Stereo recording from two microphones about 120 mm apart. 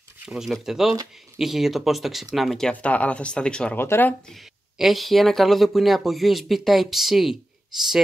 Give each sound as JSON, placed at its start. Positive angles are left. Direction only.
{"t": 0.2, "sound": "speech", "side_deg": -5}
{"t": 3.8, "sound": "speech", "side_deg": 20}
{"t": 4.3, "sound": "speech", "side_deg": 0}